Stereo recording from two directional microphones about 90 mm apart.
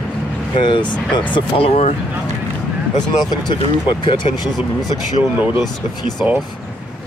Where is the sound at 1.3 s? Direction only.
90° left.